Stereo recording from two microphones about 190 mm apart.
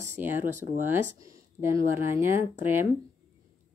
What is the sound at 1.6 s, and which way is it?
Speech, 10° right (ahead or behind).